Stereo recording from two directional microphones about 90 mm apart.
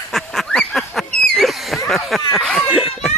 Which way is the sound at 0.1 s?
5° left (ahead or behind).